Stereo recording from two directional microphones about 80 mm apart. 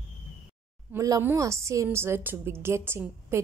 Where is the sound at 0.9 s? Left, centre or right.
Right.